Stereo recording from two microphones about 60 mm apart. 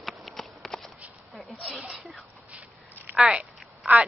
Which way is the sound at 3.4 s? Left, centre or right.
Right.